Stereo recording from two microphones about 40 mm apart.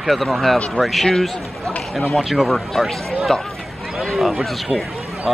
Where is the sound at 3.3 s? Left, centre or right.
Centre.